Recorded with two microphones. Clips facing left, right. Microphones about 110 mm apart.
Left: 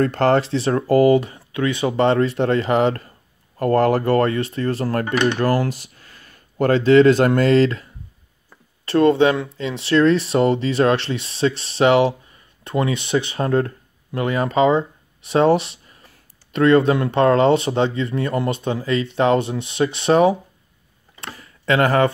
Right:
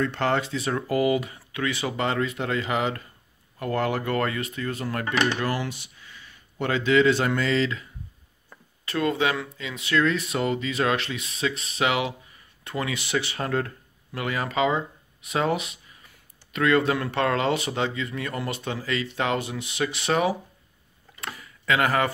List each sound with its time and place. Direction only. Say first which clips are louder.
0.0 s speech: left 8 dB; 45° left (ahead or behind)
5.1 s speech: left 4 dB; 5° right (ahead or behind)
5.4 s speech: left 9 dB; 40° left (ahead or behind)
8.8 s speech: left 10 dB; 35° left (ahead or behind)
21.4 s a sound: left 6 dB; 35° left (ahead or behind)